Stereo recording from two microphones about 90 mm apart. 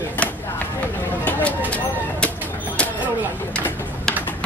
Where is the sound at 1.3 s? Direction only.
15° left (ahead or behind).